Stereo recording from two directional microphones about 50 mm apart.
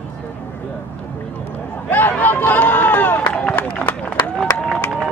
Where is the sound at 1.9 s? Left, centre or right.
Left.